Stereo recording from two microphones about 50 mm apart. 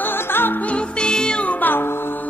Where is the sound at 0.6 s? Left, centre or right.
Centre.